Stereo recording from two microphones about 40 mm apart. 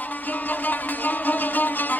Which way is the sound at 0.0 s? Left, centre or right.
Left.